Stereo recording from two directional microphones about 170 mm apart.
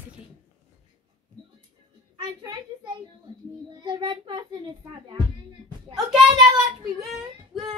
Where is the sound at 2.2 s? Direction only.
25° right (ahead or behind).